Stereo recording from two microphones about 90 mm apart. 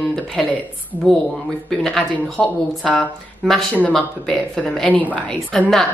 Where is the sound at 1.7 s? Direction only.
5° left (ahead or behind).